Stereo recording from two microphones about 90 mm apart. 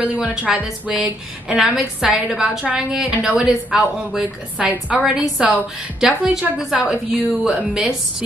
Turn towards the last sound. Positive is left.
turn(degrees=-10)  # may be behind; listen again after turning